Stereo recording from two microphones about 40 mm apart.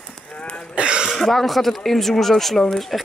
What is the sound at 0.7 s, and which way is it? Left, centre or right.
Throat clearing, right.